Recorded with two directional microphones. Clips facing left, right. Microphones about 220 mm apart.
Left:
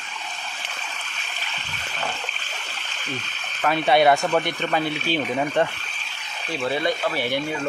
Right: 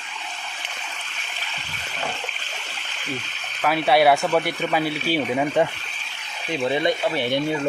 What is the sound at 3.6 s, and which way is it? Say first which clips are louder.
Speech: even; 5° right (ahead or behind).